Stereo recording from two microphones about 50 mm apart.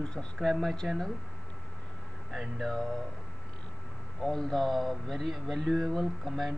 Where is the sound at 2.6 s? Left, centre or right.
Centre.